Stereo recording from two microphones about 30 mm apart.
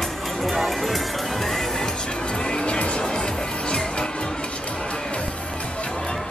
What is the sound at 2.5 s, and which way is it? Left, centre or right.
Music, left.